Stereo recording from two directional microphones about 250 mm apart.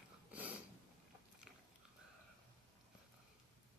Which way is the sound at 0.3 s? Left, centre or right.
Centre.